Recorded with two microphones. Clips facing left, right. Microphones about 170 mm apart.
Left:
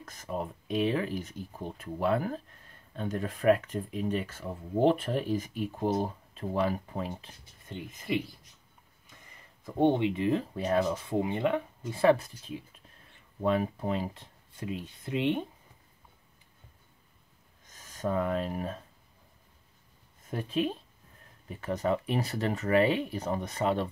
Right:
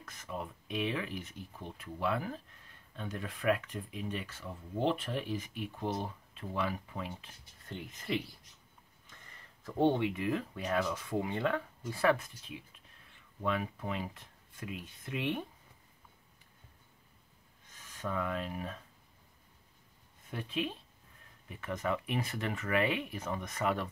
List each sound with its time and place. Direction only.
0.0 s speech: 40° left (ahead or behind)
7.6 s speech: 15° left (ahead or behind)
17.6 s speech: 40° left (ahead or behind)
20.2 s speech: 40° left (ahead or behind)